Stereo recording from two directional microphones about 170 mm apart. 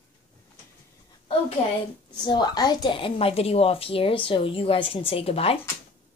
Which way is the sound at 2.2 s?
25° left (ahead or behind).